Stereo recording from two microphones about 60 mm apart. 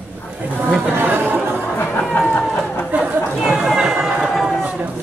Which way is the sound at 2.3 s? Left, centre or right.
Left.